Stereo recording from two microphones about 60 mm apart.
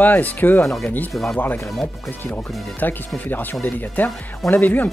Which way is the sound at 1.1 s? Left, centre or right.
Centre.